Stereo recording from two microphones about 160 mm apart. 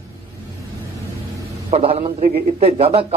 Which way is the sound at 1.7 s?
40° right (ahead or behind).